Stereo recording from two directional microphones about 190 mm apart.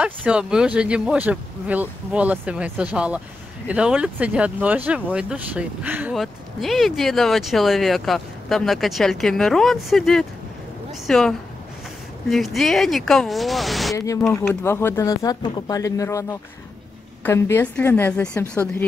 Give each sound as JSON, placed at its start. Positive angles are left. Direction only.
{"t": 0.0, "sound": "speech", "side_deg": -5}
{"t": 13.9, "sound": "speech", "side_deg": 15}